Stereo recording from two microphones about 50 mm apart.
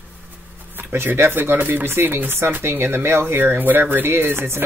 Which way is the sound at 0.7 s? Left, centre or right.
Right.